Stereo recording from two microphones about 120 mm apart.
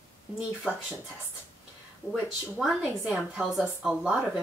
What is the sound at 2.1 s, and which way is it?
Speech, centre (ahead or behind).